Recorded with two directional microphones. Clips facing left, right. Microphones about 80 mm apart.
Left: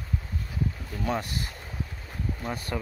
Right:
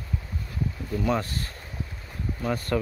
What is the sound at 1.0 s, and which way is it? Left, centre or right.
Speech, centre.